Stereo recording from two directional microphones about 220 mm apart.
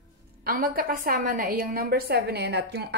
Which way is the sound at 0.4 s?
40° right (ahead or behind).